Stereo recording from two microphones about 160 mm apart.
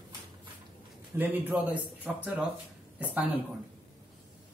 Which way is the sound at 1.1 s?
10° right (ahead or behind).